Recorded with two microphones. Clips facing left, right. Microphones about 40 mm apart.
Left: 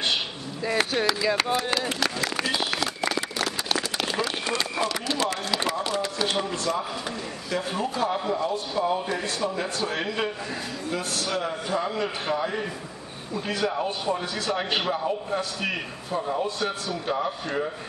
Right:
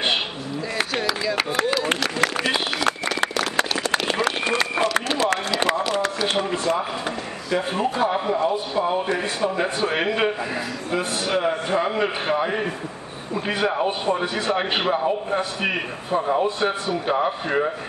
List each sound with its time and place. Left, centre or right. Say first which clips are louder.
1.0 s speech: even; centre
3.9 s a sound: right 6 dB; right
4.5 s run: right 5 dB; right
6.3 s a man's voice: right 4 dB; right